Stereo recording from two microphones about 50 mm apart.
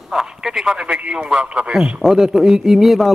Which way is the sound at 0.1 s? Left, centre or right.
Centre.